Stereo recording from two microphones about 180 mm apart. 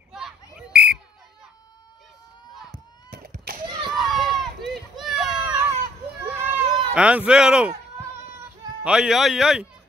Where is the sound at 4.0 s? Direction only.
Centre (ahead or behind).